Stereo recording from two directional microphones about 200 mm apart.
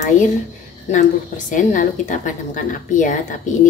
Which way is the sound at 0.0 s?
40° left (ahead or behind).